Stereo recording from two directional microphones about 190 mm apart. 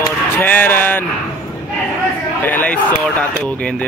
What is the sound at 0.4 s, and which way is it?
Speech, 10° left (ahead or behind).